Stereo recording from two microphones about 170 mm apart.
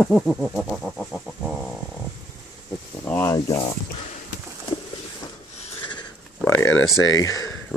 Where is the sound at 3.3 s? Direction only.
25° left (ahead or behind).